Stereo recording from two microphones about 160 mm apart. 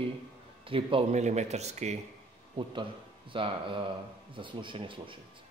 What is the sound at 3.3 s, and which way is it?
A man's voice, 30° right (ahead or behind).